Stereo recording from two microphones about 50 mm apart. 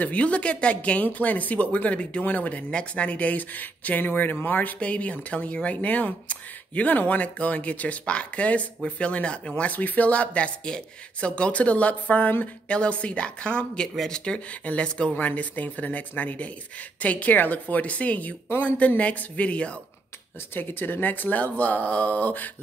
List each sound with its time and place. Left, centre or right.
0.0 s speech: left
4.7 s speech: left
9.6 s speech: left
12.6 s speech: left
15.2 s speech: left
20.5 s speech: left